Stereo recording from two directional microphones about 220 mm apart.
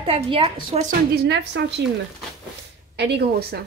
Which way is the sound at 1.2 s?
50° right (ahead or behind).